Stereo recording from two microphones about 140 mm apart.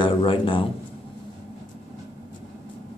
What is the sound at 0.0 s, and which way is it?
Speech, 40° left (ahead or behind).